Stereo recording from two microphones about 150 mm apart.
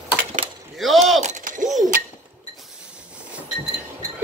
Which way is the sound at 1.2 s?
55° right (ahead or behind).